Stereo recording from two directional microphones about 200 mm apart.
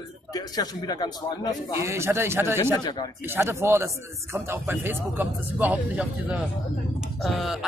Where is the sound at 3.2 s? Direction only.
10° right (ahead or behind).